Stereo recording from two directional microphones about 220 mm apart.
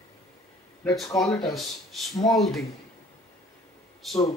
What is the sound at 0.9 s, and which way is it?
Speech, centre (ahead or behind).